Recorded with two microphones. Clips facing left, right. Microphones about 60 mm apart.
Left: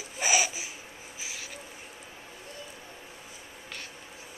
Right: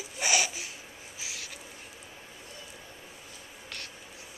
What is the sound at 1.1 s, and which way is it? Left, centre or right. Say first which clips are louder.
Owl: left 1 dB; centre.